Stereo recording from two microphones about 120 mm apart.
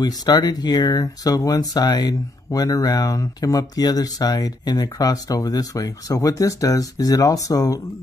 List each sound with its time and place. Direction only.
0.0 s speech: 35° left (ahead or behind)